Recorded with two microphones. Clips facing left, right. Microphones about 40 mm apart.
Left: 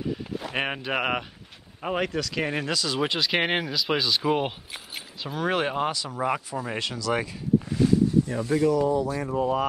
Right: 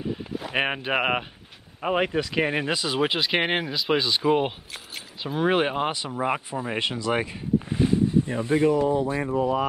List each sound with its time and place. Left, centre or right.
0.4 s speech: centre
5.2 s speech: centre